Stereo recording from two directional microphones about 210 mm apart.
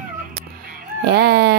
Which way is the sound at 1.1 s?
50° right (ahead or behind).